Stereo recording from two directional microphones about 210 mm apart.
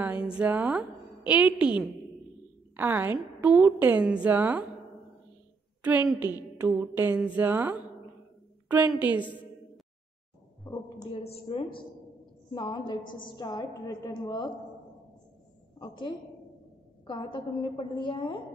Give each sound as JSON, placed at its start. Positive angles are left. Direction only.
{"t": 0.0, "sound": "a woman's voice", "side_deg": -10}
{"t": 5.9, "sound": "a woman's voice", "side_deg": -5}
{"t": 10.6, "sound": "a woman's voice", "side_deg": 0}
{"t": 11.0, "sound": "a woman's voice", "side_deg": 25}
{"t": 15.8, "sound": "a woman's voice", "side_deg": 20}